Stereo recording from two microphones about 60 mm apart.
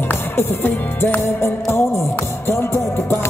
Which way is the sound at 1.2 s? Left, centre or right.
Left.